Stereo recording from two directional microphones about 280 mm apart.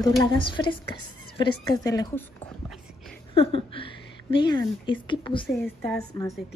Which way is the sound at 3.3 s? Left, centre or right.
Centre.